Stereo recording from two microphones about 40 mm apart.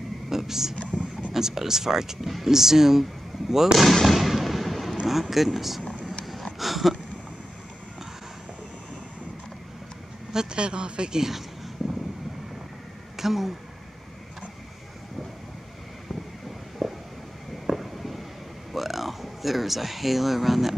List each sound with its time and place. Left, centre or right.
0.3 s vehicle: centre
1.3 s speech: centre
3.7 s fireworks: centre
5.3 s speech: centre
6.2 s a sound: centre
10.3 s speech: centre
13.1 s a sound: centre
16.8 s a sound: centre
17.6 s fireworks: centre
18.7 s speech: centre